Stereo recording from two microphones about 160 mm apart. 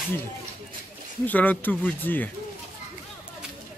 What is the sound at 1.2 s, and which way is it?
Speech, 10° left (ahead or behind).